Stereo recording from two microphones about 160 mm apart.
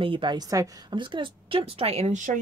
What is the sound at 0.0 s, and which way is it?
A woman's voice, 30° right (ahead or behind).